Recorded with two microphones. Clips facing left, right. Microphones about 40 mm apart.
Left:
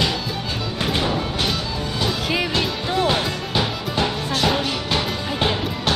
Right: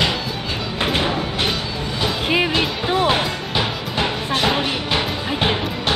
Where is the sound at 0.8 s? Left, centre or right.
Right.